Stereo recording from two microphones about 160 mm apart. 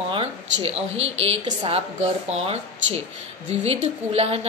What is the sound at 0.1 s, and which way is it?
A woman's voice, 35° right (ahead or behind).